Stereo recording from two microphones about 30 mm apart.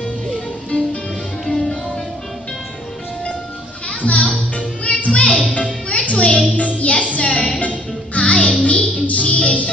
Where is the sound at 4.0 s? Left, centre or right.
Left.